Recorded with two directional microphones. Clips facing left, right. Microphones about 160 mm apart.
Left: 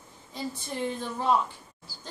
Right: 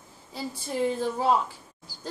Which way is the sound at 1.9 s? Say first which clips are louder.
Left 1 dB; 15° right (ahead or behind).